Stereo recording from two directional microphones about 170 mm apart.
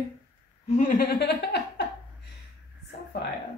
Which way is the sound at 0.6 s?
50° left (ahead or behind).